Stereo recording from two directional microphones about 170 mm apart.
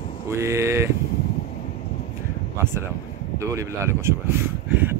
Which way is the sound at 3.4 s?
15° right (ahead or behind).